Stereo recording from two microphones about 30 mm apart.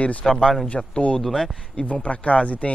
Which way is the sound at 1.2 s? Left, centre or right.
Centre.